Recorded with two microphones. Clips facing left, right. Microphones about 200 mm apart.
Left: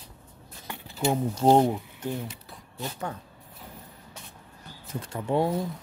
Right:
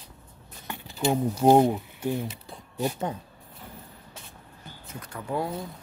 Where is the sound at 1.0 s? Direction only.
10° right (ahead or behind).